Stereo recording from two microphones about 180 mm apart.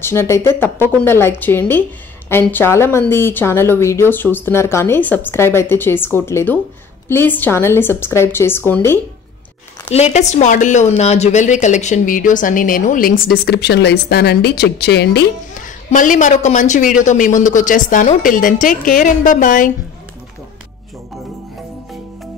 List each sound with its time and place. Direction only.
0.0 s speech: 15° left (ahead or behind)
9.8 s a woman's voice: 35° left (ahead or behind); by 15.2 s 70° left (ahead or behind)
15.5 s a woman's voice: 45° left (ahead or behind)